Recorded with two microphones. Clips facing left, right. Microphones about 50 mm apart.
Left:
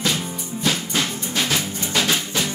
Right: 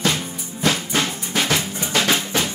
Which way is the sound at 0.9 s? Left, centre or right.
Right.